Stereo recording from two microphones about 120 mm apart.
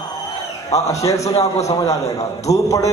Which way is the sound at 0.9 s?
25° left (ahead or behind).